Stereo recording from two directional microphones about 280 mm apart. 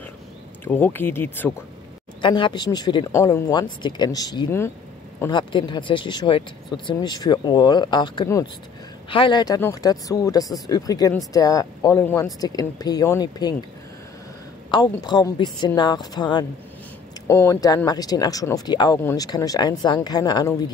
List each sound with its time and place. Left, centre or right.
0.7 s speech: centre
14.7 s speech: centre